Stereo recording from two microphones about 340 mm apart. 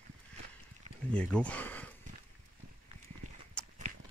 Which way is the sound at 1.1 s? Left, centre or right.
Centre.